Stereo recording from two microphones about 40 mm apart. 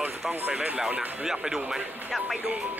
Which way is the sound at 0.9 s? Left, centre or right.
Centre.